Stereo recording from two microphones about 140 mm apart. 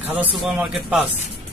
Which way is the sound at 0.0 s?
10° right (ahead or behind).